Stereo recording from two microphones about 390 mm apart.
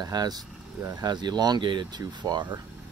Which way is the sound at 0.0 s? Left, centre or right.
Centre.